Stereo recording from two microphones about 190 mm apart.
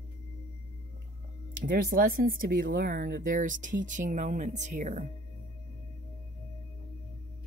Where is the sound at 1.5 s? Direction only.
50° right (ahead or behind).